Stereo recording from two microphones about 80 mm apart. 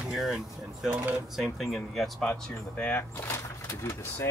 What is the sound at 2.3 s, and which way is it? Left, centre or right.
Speech, left.